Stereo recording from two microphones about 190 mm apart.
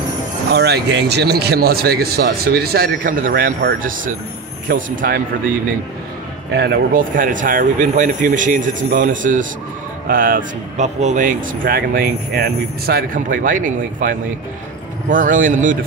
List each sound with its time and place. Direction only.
0.5 s a man's voice: 60° right (ahead or behind)
6.5 s a man's voice: 55° right (ahead or behind)